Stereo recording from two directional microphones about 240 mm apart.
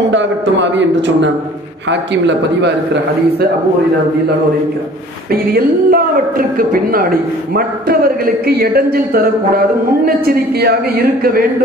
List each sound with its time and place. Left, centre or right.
0.1 s a man's voice: right
5.5 s a woman's voice: right